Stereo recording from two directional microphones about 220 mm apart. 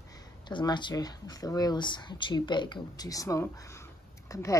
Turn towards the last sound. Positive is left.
turn(degrees=15)  # may be behind; listen again after turning